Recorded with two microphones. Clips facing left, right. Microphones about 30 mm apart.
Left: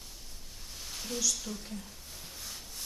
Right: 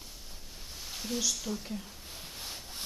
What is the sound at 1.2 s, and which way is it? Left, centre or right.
Speech, centre.